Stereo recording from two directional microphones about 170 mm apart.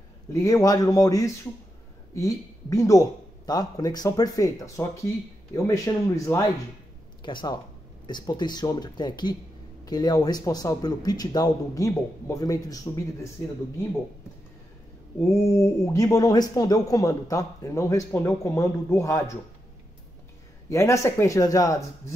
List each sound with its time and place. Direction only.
0.3 s speech: 20° left (ahead or behind)
15.2 s speech: 15° left (ahead or behind)
20.7 s speech: 15° left (ahead or behind)